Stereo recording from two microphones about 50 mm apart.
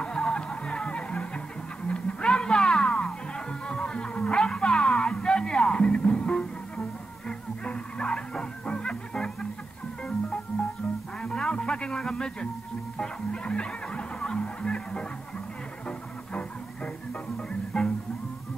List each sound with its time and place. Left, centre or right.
0.0 s music: centre
11.2 s music: centre
17.5 s music: centre